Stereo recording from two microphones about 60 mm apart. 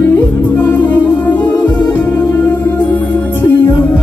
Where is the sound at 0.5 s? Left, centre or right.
Left.